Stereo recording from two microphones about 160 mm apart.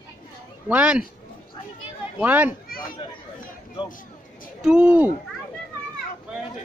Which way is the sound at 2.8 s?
25° left (ahead or behind).